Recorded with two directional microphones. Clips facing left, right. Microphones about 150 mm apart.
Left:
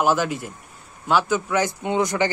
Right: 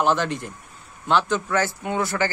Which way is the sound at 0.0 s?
5° left (ahead or behind).